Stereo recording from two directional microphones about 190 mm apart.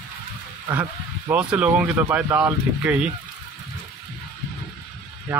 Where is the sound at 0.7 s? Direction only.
10° right (ahead or behind).